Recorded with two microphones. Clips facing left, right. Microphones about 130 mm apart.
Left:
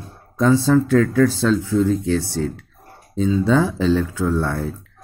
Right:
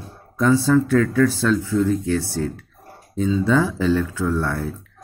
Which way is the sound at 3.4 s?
20° left (ahead or behind).